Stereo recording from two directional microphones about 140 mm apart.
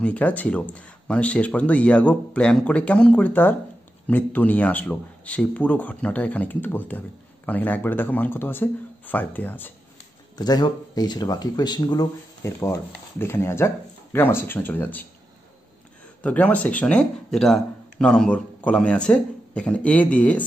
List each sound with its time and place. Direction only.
0.0 s speech: 10° left (ahead or behind)
10.3 s speech: 30° left (ahead or behind)
12.5 s speech: 15° left (ahead or behind)
16.2 s speech: 10° left (ahead or behind)